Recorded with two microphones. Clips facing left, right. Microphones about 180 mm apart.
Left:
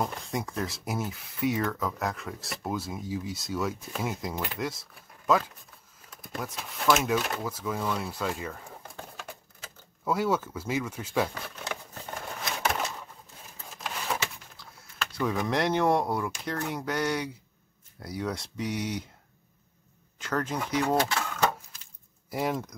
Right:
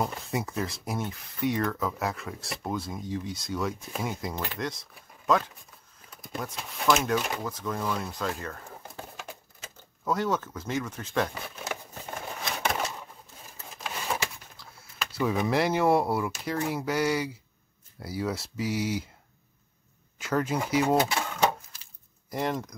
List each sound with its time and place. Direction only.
0.0 s speech: 5° right (ahead or behind)
10.0 s speech: 10° left (ahead or behind)
11.3 s a sound: 5° right (ahead or behind)
13.8 s speech: 5° right (ahead or behind)
20.2 s speech: 5° right (ahead or behind)
21.0 s a sound: 15° right (ahead or behind)
22.3 s speech: 5° left (ahead or behind)